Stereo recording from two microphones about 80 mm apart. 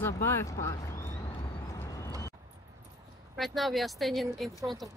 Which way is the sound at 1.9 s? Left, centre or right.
Left.